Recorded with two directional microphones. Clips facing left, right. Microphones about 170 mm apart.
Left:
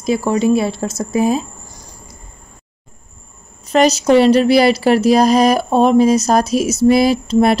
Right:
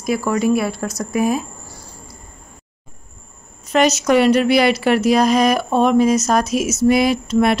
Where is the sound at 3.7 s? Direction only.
30° left (ahead or behind).